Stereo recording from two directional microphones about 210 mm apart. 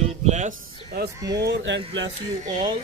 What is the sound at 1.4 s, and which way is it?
Speech, 55° right (ahead or behind).